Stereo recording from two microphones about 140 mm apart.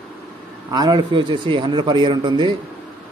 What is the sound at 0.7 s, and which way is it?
A man's voice, 30° right (ahead or behind).